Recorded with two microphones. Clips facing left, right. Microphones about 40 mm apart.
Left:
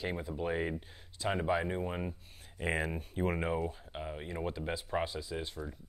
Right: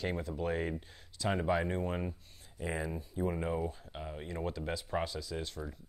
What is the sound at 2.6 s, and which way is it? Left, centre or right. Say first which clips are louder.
Speech: left 3 dB; left.